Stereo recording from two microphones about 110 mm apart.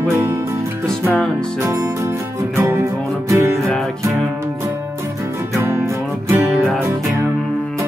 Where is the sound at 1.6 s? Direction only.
30° right (ahead or behind).